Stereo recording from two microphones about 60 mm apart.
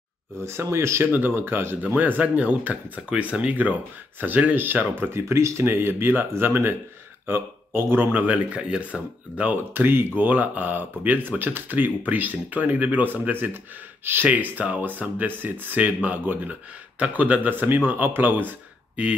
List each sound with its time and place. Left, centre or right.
0.4 s speech: right
1.1 s speech: right
5.1 s speech: right
9.8 s speech: right